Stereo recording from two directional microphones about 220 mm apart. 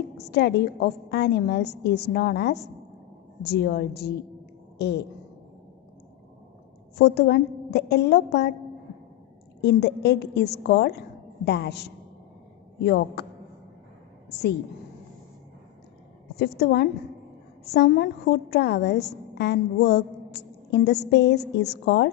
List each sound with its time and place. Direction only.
0.3 s a woman's voice: 50° left (ahead or behind)
4.7 s a sound: 50° left (ahead or behind)
7.0 s a woman's voice: 50° left (ahead or behind)
9.6 s a woman's voice: 50° left (ahead or behind)
16.3 s a woman's voice: 50° left (ahead or behind)